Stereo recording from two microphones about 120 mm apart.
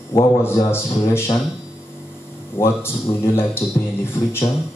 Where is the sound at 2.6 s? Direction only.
20° left (ahead or behind).